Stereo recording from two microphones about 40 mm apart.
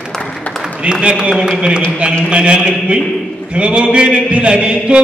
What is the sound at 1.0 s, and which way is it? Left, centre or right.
A man's voice, right.